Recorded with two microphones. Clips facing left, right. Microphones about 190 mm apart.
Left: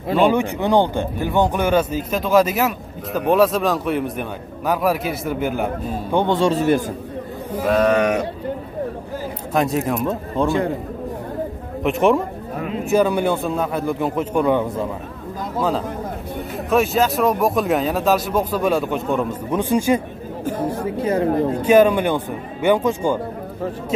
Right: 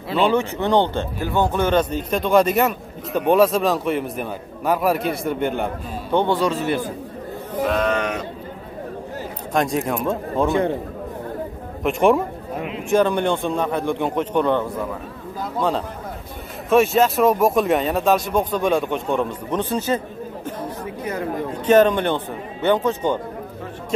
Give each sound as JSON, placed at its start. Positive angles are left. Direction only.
{"t": 0.2, "sound": "speech", "side_deg": 15}
{"t": 6.1, "sound": "a man's voice", "side_deg": 20}
{"t": 6.5, "sound": "speech", "side_deg": 45}
{"t": 7.5, "sound": "a man's voice", "side_deg": 5}
{"t": 9.5, "sound": "speech", "side_deg": 0}
{"t": 11.8, "sound": "speech", "side_deg": 0}
{"t": 16.7, "sound": "speech", "side_deg": 0}
{"t": 20.5, "sound": "chatter", "side_deg": 30}
{"t": 21.5, "sound": "a man's voice", "side_deg": 10}